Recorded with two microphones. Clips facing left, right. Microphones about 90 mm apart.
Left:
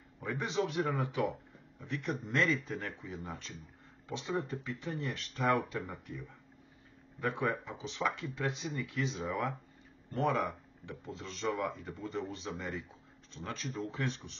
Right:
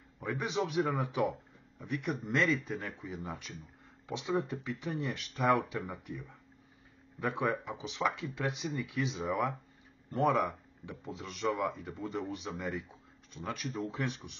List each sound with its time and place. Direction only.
0.2 s speech: 15° right (ahead or behind)
2.1 s speech: centre (ahead or behind)
10.3 s speech: centre (ahead or behind)